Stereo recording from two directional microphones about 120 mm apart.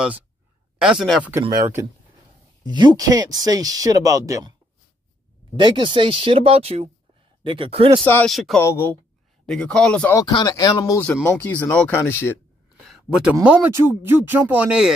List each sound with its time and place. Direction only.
0.7 s speech: 5° right (ahead or behind)
1.2 s speech: 20° right (ahead or behind)
2.6 s speech: 35° right (ahead or behind)
5.6 s speech: 40° right (ahead or behind)
8.0 s speech: 15° left (ahead or behind)
8.3 s speech: centre (ahead or behind)
8.5 s speech: 20° left (ahead or behind)
9.5 s speech: 5° left (ahead or behind)
10.4 s speech: 30° left (ahead or behind)
11.2 s speech: 15° left (ahead or behind)
12.8 s speech: 10° right (ahead or behind)